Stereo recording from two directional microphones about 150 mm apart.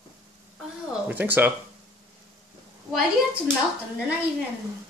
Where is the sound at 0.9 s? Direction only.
10° right (ahead or behind).